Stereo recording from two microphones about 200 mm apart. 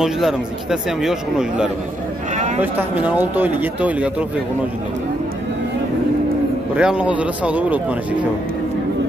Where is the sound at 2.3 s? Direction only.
35° right (ahead or behind).